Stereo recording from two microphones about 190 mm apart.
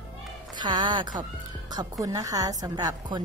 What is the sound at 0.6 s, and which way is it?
A woman's voice, 25° right (ahead or behind).